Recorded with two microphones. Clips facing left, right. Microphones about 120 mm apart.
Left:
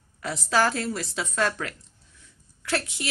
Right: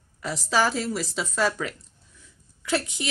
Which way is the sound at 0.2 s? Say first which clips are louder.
Even; centre (ahead or behind).